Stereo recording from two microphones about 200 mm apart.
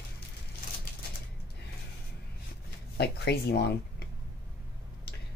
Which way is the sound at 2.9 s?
55° left (ahead or behind).